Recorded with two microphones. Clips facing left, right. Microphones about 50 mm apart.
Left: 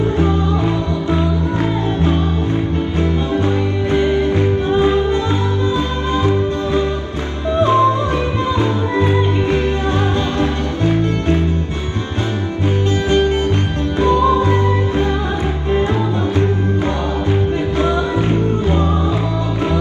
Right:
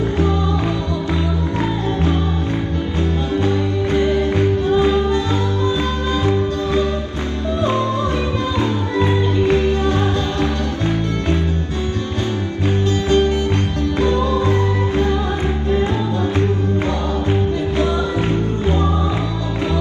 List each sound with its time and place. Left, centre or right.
3.0 s music: left
6.2 s music: left
13.1 s music: left
17.3 s music: left